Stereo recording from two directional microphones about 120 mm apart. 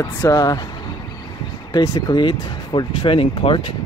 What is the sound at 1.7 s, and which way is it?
Speech, 30° left (ahead or behind).